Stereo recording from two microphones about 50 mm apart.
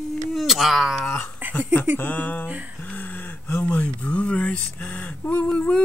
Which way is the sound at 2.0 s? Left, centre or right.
Left.